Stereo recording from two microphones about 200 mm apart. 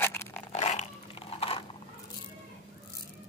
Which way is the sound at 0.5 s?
35° left (ahead or behind).